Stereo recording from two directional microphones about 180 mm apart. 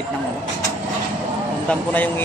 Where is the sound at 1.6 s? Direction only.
10° left (ahead or behind).